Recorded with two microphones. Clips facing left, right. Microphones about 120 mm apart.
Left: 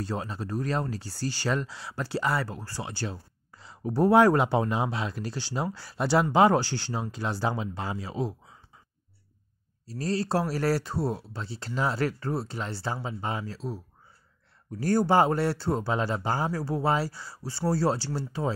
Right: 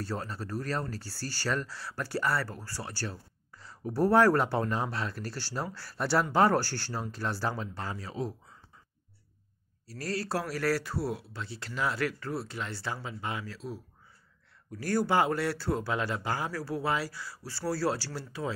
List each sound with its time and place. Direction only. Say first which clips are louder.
0.1 s speech: left 3 dB; 15° left (ahead or behind)
7.8 s speech: left 3 dB; 25° left (ahead or behind)
9.8 s speech: left 5 dB; 25° left (ahead or behind)
14.8 s speech: left 5 dB; 25° left (ahead or behind)